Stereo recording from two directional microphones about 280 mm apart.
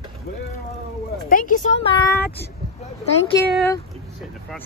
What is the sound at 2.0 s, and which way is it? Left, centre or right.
Speech, centre.